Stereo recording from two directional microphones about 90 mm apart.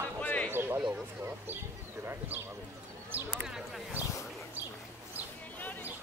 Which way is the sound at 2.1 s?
20° right (ahead or behind).